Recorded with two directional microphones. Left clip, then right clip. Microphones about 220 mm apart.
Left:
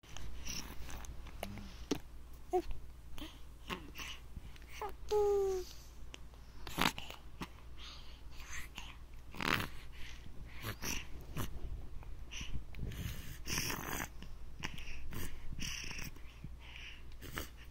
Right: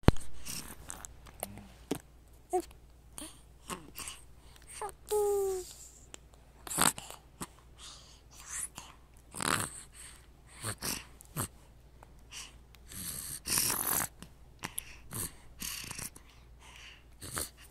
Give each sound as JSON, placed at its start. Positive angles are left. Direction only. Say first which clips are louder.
{"t": 0.5, "sound": "purr", "louder": "right 2 dB", "side_deg": -20}
{"t": 3.2, "sound": "a sound", "louder": "right 2 dB", "side_deg": -20}
{"t": 6.1, "sound": "biting", "louder": "left 1 dB", "side_deg": -20}
{"t": 10.5, "sound": "dog", "louder": "right 3 dB", "side_deg": -15}
{"t": 12.4, "sound": "snoring", "louder": "left 2 dB", "side_deg": -20}
{"t": 15.8, "sound": "cat", "louder": "right 2 dB", "side_deg": -20}
{"t": 17.2, "sound": "dog", "louder": "right 5 dB", "side_deg": -20}